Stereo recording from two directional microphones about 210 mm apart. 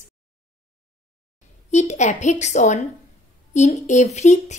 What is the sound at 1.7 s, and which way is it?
Speech, 35° left (ahead or behind).